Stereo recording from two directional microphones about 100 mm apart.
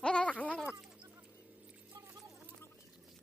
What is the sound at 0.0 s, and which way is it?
Sheep, 10° left (ahead or behind).